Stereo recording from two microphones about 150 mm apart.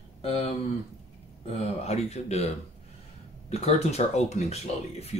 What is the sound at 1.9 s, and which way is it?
Speech, 45° left (ahead or behind).